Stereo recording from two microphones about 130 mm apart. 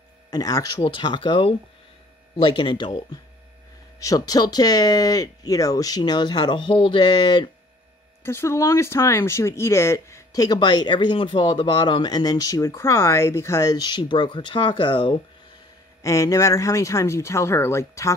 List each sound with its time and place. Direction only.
0.3 s speech: 25° left (ahead or behind)
0.8 s speech: 40° left (ahead or behind)
8.2 s speech: 20° left (ahead or behind); by 15.1 s 35° left (ahead or behind)
16.0 s speech: 25° left (ahead or behind)